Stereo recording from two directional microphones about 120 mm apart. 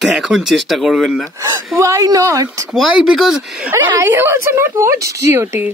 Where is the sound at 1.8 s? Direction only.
25° right (ahead or behind).